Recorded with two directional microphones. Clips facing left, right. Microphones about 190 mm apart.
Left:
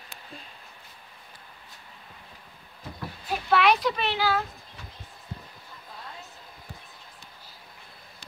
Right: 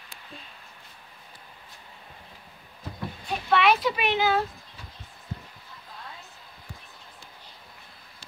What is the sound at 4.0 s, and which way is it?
Speech, 20° right (ahead or behind).